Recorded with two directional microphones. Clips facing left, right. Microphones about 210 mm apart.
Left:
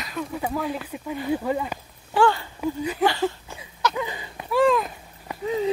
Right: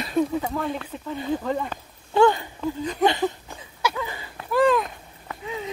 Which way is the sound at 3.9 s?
15° left (ahead or behind).